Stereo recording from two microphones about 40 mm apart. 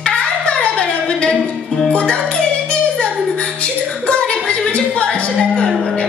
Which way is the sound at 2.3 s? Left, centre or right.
Left.